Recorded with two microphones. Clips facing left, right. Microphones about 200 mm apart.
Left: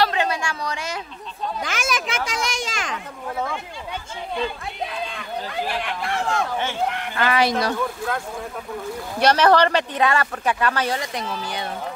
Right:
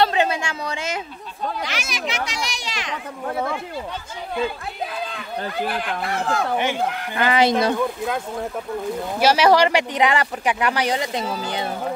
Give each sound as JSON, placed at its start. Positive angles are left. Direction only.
{"t": 0.0, "sound": "a sound", "side_deg": -25}
{"t": 1.6, "sound": "a child's voice", "side_deg": 50}
{"t": 5.7, "sound": "speech", "side_deg": 0}
{"t": 7.2, "sound": "speech", "side_deg": -20}
{"t": 9.2, "sound": "speech", "side_deg": -10}